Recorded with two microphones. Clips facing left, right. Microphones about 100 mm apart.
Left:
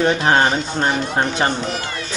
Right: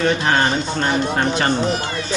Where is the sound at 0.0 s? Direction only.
20° left (ahead or behind).